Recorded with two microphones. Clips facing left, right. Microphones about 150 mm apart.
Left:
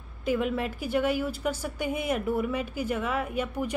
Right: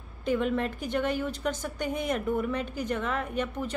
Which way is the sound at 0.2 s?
5° left (ahead or behind).